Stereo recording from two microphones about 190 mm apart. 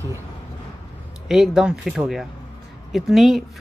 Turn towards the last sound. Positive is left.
turn(degrees=0)  # may be behind; listen again after turning